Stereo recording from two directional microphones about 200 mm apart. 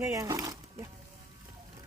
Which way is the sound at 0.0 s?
15° right (ahead or behind).